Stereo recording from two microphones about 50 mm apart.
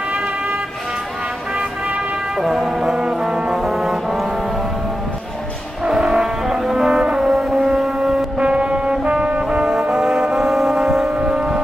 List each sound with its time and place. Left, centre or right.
1.6 s music: centre
2.4 s music: centre
3.6 s brass instrument: centre
5.9 s foghorn: centre
9.7 s music: centre
11.1 s civil defense siren: centre